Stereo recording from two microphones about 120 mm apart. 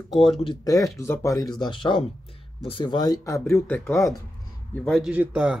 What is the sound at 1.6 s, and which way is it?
Speech, 45° left (ahead or behind).